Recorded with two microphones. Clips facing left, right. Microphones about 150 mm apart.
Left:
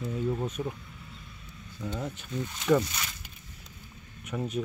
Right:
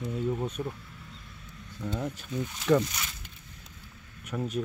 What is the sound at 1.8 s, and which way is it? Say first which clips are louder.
Speech: right 2 dB; centre (ahead or behind).